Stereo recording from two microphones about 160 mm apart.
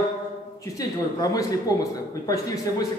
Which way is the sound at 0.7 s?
20° left (ahead or behind).